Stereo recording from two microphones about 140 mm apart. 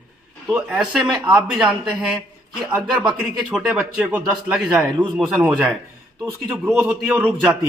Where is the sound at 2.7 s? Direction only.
5° right (ahead or behind).